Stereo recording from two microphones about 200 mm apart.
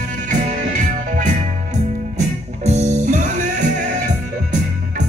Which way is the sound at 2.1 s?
35° right (ahead or behind).